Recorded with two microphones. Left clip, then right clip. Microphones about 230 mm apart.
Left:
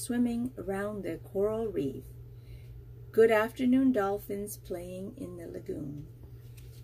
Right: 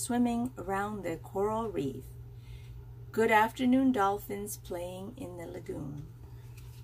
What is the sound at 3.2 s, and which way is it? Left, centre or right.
A woman's voice, centre.